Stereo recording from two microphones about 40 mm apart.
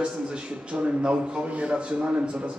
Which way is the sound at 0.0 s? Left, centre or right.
Right.